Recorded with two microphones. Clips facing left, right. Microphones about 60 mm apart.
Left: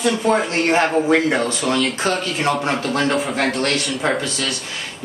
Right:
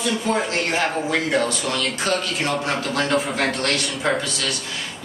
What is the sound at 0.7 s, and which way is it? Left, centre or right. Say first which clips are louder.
Speech: left 6 dB; left.